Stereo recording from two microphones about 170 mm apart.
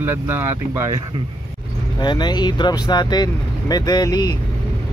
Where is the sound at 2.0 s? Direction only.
25° left (ahead or behind).